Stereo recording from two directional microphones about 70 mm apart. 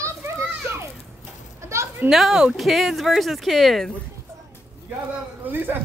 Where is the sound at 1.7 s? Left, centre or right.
Right.